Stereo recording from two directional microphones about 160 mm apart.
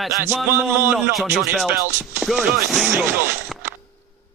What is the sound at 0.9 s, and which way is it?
Speech, centre (ahead or behind).